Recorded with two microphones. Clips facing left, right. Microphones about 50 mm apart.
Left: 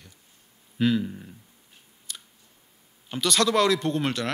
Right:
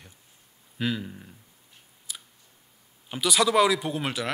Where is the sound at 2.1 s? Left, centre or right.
Centre.